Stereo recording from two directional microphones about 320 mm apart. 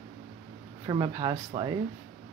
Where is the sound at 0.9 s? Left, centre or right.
Centre.